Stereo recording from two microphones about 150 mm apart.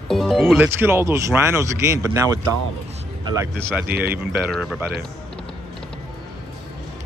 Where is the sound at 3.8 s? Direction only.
90° right.